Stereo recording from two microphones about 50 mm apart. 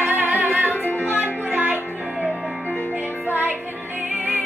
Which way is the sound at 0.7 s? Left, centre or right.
Left.